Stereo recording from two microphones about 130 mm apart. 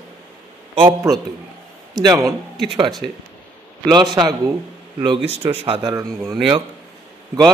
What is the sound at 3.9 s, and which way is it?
Speech, 35° right (ahead or behind).